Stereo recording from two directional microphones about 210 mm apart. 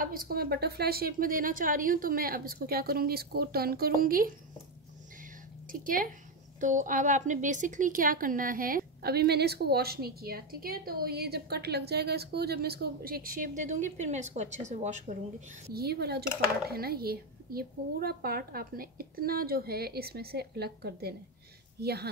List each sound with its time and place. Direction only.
0.0 s a woman's voice: 45° right (ahead or behind)
5.2 s a sound: 40° right (ahead or behind)
6.6 s a woman's voice: 35° right (ahead or behind)